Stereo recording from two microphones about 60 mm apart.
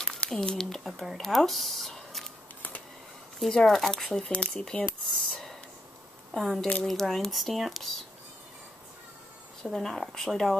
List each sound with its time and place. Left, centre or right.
0.0 s speech: centre
3.3 s speech: centre
5.3 s a sound: centre
6.3 s speech: centre
9.6 s speech: centre